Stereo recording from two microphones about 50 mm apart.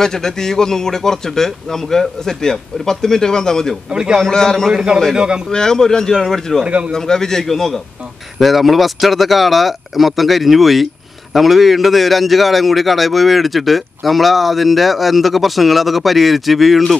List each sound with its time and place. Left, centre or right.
0.0 s a man's voice: centre
3.9 s a man's voice: centre
4.2 s a man's voice: centre
4.7 s a man's voice: centre
5.5 s a man's voice: centre
6.6 s speech: right
6.9 s a man's voice: centre